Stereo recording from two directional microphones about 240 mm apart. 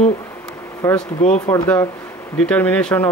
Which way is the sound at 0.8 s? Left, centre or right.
Centre.